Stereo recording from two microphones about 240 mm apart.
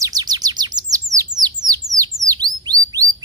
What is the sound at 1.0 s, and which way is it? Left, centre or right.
Bird, centre.